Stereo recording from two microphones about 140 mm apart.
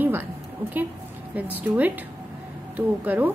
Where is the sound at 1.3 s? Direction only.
10° right (ahead or behind).